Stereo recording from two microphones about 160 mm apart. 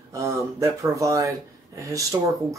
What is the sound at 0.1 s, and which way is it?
Speech, 20° right (ahead or behind).